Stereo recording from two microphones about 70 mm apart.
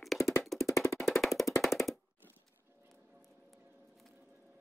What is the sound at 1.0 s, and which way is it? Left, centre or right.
Music, centre.